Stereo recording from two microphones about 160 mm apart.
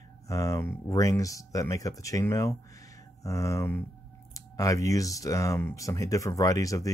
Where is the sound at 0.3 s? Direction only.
20° left (ahead or behind).